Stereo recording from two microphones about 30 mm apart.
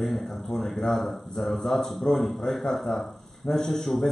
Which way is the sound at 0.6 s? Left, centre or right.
Centre.